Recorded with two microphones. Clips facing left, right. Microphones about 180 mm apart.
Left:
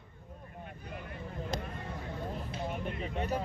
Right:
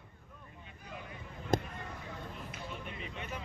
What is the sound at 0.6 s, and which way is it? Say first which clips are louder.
Vehicle: left 4 dB; 55° left (ahead or behind).